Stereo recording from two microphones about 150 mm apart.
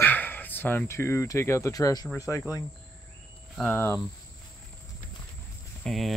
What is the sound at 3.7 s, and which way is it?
Speech, 15° left (ahead or behind).